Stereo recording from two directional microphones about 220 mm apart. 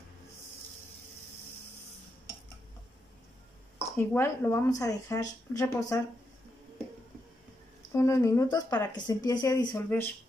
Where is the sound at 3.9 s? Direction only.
10° left (ahead or behind).